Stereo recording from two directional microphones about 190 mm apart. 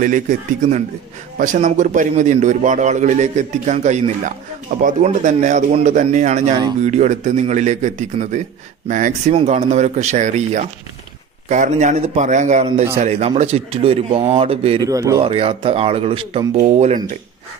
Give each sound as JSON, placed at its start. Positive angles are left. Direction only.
{"t": 0.0, "sound": "a man's voice", "side_deg": -45}
{"t": 14.8, "sound": "speech", "side_deg": -15}
{"t": 15.2, "sound": "a man's voice", "side_deg": -30}